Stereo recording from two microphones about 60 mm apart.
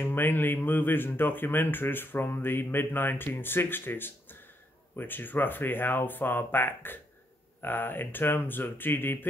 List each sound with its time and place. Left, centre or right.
0.0 s speech: left